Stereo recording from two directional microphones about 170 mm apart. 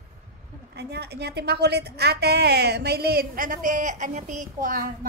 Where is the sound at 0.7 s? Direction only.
75° right (ahead or behind).